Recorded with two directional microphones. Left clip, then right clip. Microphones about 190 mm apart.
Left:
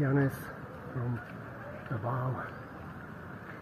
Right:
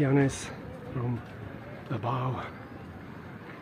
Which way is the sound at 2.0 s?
15° right (ahead or behind).